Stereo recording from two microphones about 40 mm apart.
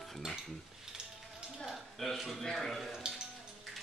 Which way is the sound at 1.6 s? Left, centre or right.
Centre.